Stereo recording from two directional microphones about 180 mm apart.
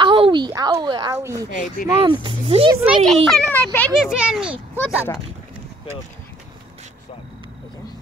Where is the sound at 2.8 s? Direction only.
5° right (ahead or behind).